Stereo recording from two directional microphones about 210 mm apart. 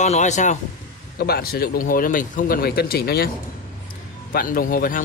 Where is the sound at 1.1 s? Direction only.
45° left (ahead or behind).